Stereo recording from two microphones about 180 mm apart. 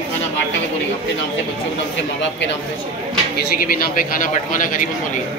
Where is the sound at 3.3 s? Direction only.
50° left (ahead or behind).